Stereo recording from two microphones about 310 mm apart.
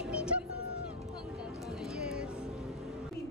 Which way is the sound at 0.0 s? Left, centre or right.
Centre.